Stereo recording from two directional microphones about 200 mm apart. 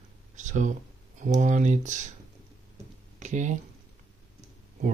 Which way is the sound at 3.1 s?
35° right (ahead or behind).